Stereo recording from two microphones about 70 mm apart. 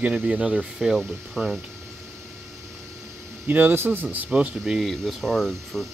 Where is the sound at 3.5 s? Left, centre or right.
Right.